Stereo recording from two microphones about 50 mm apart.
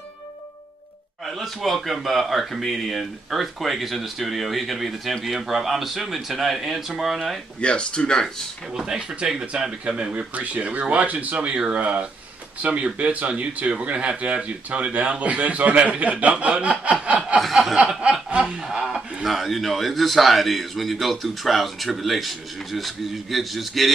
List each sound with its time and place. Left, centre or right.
1.2 s a man's voice: centre
7.6 s speech: left
8.7 s speech: centre
17.4 s a man's voice: centre
17.7 s snicker: centre
18.7 s speech: centre
19.2 s a man's voice: centre